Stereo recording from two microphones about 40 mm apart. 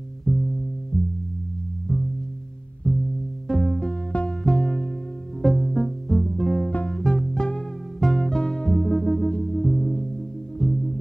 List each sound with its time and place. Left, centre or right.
0.2 s music: centre
2.8 s music: left
4.4 s music: centre